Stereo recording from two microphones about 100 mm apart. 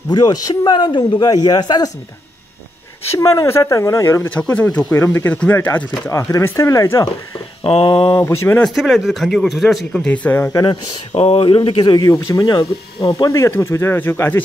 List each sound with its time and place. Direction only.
0.1 s a man's voice: 40° left (ahead or behind)
3.2 s speech: 30° left (ahead or behind)
4.3 s speech: 15° left (ahead or behind)
4.9 s speech: 20° left (ahead or behind)
7.6 s speech: 65° left (ahead or behind)
8.2 s speech: 25° left (ahead or behind)
8.6 s speech: 5° left (ahead or behind)
10.5 s a man's voice: 45° left (ahead or behind)
11.1 s speech: 70° left (ahead or behind); by 12.0 s 55° left (ahead or behind)
12.0 s a man's voice: 40° left (ahead or behind)
13.3 s speech: 30° left (ahead or behind)